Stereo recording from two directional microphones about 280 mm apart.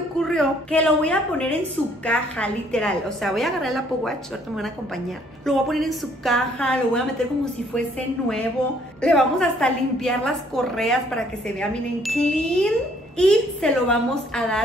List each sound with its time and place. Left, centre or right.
0.2 s a woman's voice: centre
9.0 s a woman's voice: centre